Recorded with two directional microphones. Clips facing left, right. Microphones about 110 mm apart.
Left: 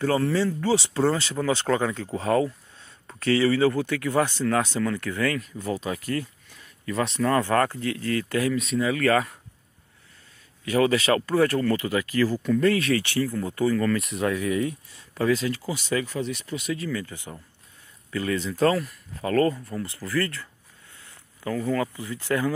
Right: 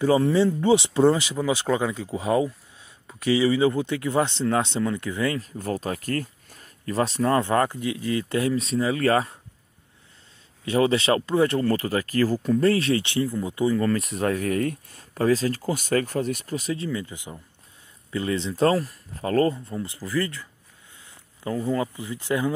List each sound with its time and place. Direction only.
0.0 s speech: 15° right (ahead or behind)
5.4 s speech: 45° right (ahead or behind); by 9.4 s 30° right (ahead or behind)
10.6 s speech: 25° right (ahead or behind)
11.7 s speech: 40° right (ahead or behind); by 13.8 s 15° right (ahead or behind)
13.8 s speech: 35° right (ahead or behind)
19.7 s speech: 15° right (ahead or behind)
21.0 s a sound: 20° right (ahead or behind)
21.9 s speech: 20° right (ahead or behind)